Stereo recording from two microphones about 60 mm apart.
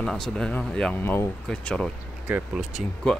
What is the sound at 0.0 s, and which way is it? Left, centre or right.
Speech, centre.